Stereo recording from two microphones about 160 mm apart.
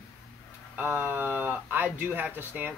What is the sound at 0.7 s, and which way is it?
Speech, 10° right (ahead or behind).